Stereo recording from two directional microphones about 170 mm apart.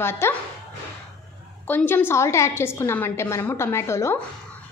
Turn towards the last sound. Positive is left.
turn(degrees=15)  # may be behind; listen again after turning